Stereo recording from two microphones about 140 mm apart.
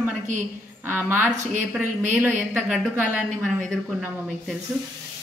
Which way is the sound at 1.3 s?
60° right (ahead or behind).